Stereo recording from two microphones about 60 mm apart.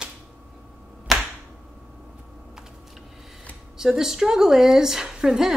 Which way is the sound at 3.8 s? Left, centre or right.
Centre.